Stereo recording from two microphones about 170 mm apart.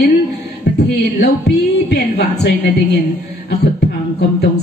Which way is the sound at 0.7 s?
70° left (ahead or behind).